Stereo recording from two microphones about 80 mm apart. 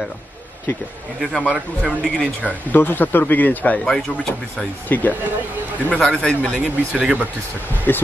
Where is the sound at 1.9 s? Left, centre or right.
Centre.